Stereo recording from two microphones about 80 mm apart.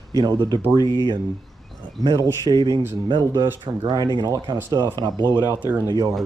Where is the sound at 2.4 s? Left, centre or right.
Right.